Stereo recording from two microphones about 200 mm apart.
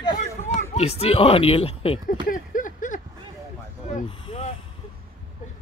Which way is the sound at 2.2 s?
40° left (ahead or behind).